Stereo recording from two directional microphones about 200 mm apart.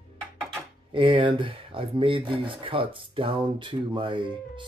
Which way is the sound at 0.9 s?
25° right (ahead or behind).